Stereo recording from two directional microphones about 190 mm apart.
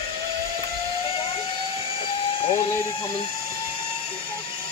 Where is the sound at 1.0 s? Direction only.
30° left (ahead or behind).